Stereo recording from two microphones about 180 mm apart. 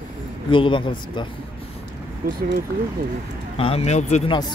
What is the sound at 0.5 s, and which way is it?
Speech, 25° left (ahead or behind).